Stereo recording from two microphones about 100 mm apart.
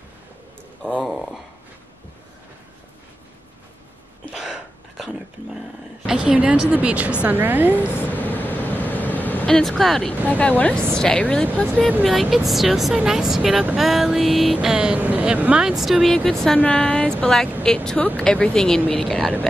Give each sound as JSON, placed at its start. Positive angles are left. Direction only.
{"t": 1.0, "sound": "speech", "side_deg": 0}
{"t": 4.3, "sound": "a sound", "side_deg": 0}
{"t": 6.0, "sound": "a woman's voice", "side_deg": -10}
{"t": 8.2, "sound": "vehicle", "side_deg": 20}
{"t": 9.6, "sound": "speech", "side_deg": 0}
{"t": 10.2, "sound": "a woman's voice", "side_deg": 15}
{"t": 12.0, "sound": "speech", "side_deg": 0}
{"t": 16.5, "sound": "a woman's voice", "side_deg": 15}